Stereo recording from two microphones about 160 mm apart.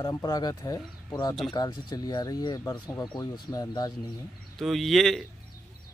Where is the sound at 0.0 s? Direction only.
25° left (ahead or behind).